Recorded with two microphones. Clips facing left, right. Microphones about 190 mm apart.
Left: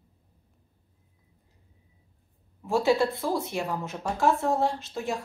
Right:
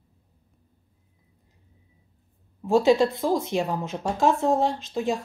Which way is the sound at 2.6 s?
20° right (ahead or behind).